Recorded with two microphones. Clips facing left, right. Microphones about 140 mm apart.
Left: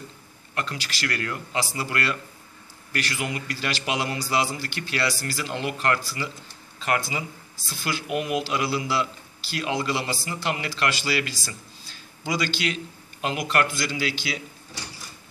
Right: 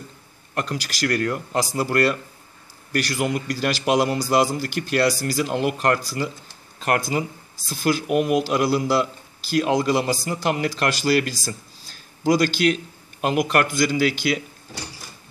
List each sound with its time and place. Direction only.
0.6 s speech: 45° right (ahead or behind)